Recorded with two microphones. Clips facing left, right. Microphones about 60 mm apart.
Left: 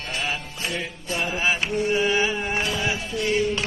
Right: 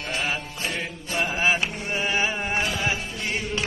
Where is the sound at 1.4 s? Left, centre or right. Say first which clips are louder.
Left 2 dB; right.